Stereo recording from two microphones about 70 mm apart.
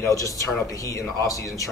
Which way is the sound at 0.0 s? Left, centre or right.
Left.